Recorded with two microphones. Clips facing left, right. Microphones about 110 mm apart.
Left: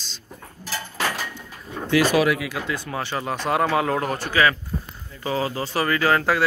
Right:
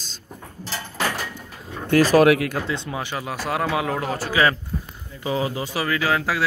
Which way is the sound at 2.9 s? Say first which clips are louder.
Left 2 dB; 10° right (ahead or behind).